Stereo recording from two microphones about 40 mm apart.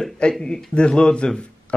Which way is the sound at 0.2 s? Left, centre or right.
Left.